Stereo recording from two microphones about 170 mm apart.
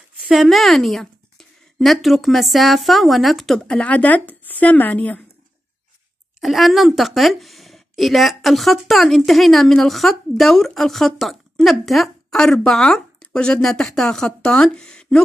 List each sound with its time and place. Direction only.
0.2 s a woman's voice: centre (ahead or behind)
6.4 s a woman's voice: centre (ahead or behind)